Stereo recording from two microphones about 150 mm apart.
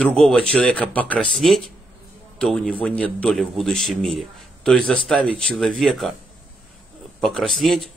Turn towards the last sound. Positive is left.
turn(degrees=0)  # may be behind; listen again after turning